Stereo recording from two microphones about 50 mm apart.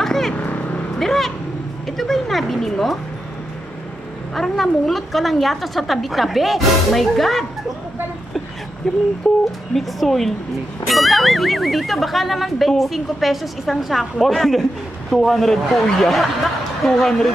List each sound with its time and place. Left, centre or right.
0.0 s vehicle: centre
0.4 s vehicle: left
0.9 s vehicle: centre
1.9 s a sound: centre
4.4 s speech: centre
8.8 s speech: centre